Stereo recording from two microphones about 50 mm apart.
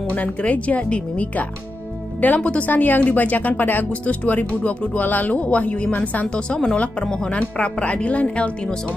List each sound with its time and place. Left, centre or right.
0.1 s speech: left
4.0 s speech: left